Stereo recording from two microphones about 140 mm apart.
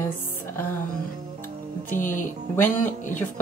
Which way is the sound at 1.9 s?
70° left (ahead or behind).